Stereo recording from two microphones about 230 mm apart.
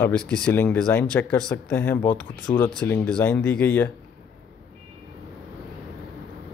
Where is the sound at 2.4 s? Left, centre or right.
Centre.